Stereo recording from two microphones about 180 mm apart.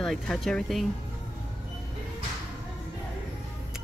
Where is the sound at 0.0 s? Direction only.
Centre (ahead or behind).